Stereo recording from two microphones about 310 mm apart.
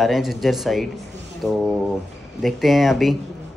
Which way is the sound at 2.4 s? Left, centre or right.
Centre.